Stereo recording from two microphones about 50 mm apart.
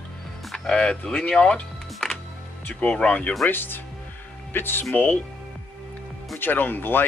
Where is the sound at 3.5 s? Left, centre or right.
Left.